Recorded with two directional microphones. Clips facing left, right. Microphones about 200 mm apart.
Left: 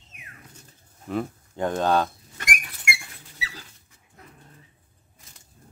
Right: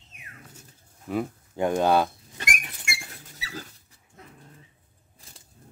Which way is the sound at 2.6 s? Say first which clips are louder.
Left 4 dB; 30° right (ahead or behind).